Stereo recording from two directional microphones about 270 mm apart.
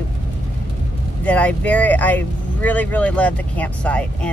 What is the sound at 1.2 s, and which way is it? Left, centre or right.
Speech, centre.